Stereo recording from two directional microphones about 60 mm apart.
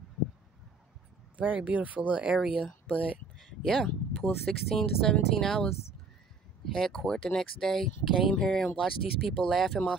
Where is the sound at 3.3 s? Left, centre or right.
Centre.